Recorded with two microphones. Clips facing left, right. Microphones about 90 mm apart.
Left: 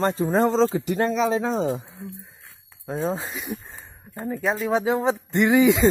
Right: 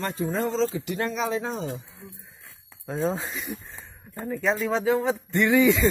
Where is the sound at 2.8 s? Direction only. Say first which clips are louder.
Left 1 dB; 20° left (ahead or behind).